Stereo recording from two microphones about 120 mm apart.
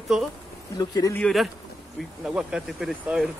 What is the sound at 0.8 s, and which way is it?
Speech, 30° left (ahead or behind).